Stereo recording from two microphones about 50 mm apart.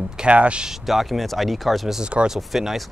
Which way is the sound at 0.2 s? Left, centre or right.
Right.